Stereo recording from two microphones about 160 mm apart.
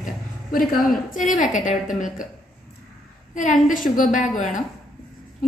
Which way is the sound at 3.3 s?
50° left (ahead or behind).